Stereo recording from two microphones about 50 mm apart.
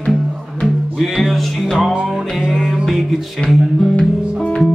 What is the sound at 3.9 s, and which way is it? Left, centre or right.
Music, left.